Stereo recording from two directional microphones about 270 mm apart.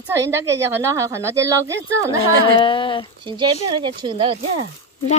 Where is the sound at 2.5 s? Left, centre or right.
Centre.